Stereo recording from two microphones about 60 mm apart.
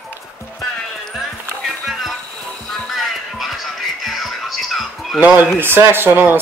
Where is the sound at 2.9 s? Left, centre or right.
Centre.